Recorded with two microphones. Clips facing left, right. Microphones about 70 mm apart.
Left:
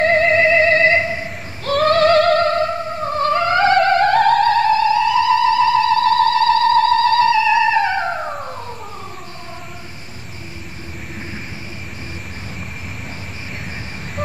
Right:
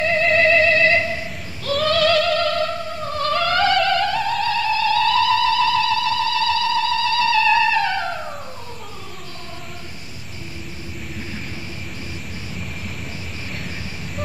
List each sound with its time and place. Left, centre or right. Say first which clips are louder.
0.0 s theremin: left 5 dB; left
0.3 s music: left 2 dB; left
1.7 s music: left 5 dB; left
4.1 s music: left 8 dB; left
4.8 s music: left 3 dB; centre; by 7.3 s left
7.3 s theremin: left 2 dB; centre